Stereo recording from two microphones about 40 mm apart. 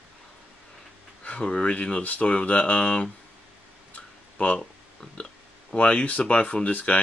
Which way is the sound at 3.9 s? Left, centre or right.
Left.